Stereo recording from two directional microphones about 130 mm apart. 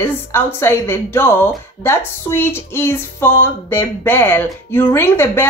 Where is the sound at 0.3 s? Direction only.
15° left (ahead or behind).